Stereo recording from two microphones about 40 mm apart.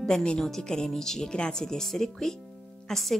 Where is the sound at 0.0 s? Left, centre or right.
Centre.